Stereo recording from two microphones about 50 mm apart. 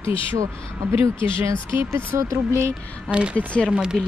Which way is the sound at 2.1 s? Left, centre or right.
Right.